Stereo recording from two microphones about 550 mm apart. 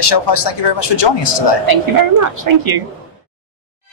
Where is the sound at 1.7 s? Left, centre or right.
Right.